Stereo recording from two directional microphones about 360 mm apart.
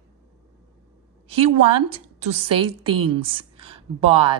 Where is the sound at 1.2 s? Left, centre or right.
Centre.